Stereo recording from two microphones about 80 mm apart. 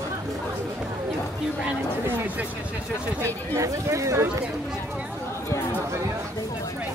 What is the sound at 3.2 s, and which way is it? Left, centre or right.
Speech, right.